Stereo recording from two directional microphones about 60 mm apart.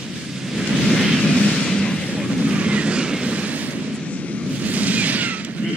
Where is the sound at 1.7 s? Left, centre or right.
Centre.